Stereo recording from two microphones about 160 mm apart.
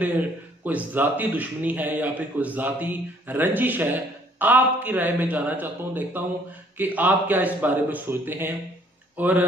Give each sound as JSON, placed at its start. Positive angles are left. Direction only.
{"t": 0.7, "sound": "a man's voice", "side_deg": -10}